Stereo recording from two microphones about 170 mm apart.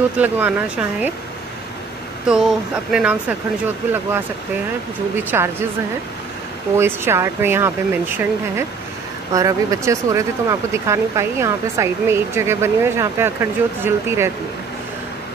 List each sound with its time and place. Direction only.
0.2 s speech: 10° right (ahead or behind)
2.2 s speech: 5° right (ahead or behind)
6.8 s speech: 15° right (ahead or behind)